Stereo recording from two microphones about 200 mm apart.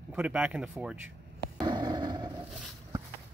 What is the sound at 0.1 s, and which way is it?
Speech, 10° right (ahead or behind).